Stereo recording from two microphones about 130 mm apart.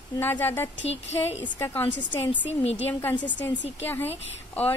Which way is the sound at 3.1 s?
35° left (ahead or behind).